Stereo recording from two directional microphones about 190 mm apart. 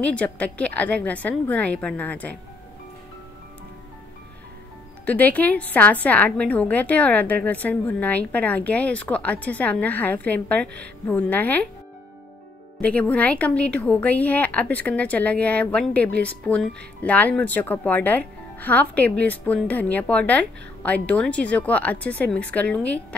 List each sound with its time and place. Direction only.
0.0 s a woman's voice: 5° left (ahead or behind)
5.0 s a woman's voice: 10° left (ahead or behind)
12.8 s a woman's voice: 5° left (ahead or behind)